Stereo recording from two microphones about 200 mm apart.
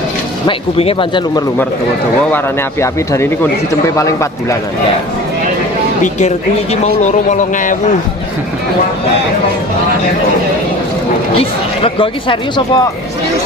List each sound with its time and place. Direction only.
0.5 s speech: 25° left (ahead or behind)
2.3 s speech: 15° left (ahead or behind)
6.1 s speech: 35° left (ahead or behind)
11.3 s speech: 25° left (ahead or behind)